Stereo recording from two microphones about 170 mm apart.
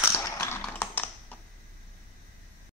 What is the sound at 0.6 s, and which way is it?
Typing, 10° left (ahead or behind).